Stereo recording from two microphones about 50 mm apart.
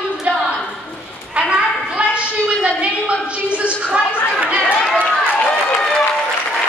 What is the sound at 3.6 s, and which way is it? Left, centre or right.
Chatter, right.